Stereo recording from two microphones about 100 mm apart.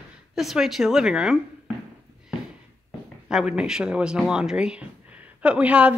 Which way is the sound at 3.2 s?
5° right (ahead or behind).